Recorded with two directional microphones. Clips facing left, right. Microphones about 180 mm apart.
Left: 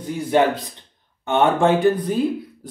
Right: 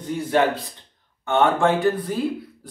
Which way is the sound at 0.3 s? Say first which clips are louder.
Left 3 dB; 20° left (ahead or behind).